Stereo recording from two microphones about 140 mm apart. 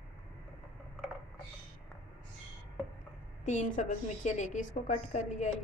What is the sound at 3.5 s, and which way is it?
A woman's voice, 60° left (ahead or behind).